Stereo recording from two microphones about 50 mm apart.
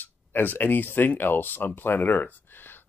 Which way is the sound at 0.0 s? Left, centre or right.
Left.